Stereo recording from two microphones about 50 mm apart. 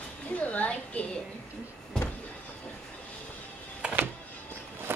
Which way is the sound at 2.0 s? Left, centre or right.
Centre.